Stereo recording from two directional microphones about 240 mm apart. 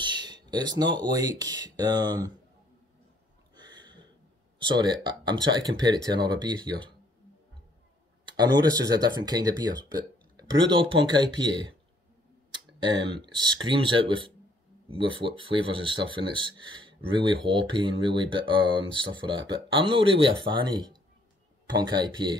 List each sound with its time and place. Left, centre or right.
0.0 s a sound: centre
0.9 s speech: centre
3.5 s a sound: centre
4.6 s speech: centre
8.3 s speech: centre
12.8 s speech: centre